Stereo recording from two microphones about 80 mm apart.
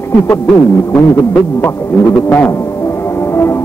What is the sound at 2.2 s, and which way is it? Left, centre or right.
Speech, left.